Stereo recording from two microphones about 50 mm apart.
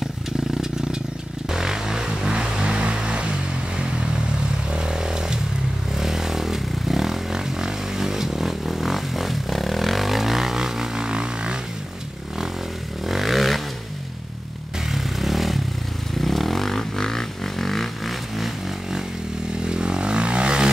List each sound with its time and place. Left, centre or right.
1.5 s music: centre
4.7 s motorcycle: centre
5.9 s vehicle: centre
13.0 s vehicle: centre
14.9 s vehicle: centre
19.6 s vehicle: centre